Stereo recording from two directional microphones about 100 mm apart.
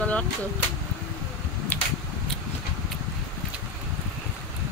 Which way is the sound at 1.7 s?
15° left (ahead or behind).